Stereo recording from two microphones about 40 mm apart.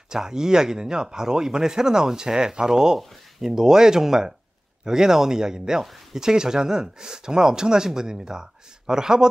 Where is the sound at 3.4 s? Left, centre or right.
Centre.